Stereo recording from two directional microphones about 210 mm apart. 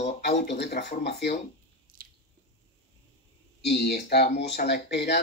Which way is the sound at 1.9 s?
40° right (ahead or behind).